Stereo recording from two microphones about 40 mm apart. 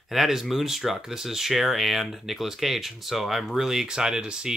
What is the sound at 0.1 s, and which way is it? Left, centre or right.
Speech, centre.